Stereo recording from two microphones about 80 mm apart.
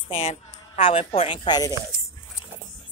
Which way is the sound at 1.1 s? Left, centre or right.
Left.